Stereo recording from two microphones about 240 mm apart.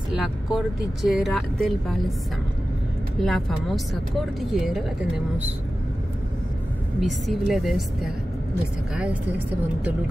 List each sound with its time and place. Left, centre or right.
0.1 s speech: centre
3.2 s speech: centre
7.0 s speech: centre